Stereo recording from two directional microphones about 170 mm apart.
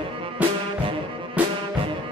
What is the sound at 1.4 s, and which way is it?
Music, 10° right (ahead or behind).